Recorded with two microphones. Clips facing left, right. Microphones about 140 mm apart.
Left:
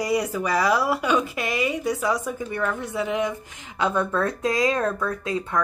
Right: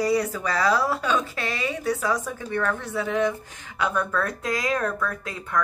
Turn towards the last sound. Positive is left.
turn(degrees=20)  # may be behind; listen again after turning